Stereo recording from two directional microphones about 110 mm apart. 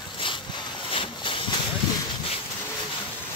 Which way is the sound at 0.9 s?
50° left (ahead or behind).